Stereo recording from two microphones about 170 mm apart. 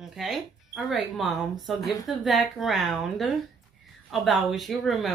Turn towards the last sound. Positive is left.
turn(degrees=0)  # may be behind; listen again after turning